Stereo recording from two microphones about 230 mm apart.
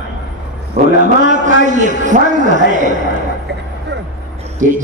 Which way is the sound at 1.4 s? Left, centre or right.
Right.